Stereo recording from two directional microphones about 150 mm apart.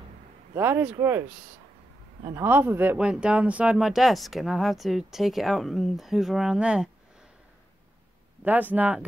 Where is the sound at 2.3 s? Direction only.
15° right (ahead or behind).